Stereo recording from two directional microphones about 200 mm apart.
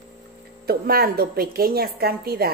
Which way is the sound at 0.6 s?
50° right (ahead or behind).